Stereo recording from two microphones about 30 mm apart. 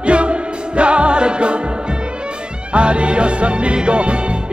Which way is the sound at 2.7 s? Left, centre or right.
Right.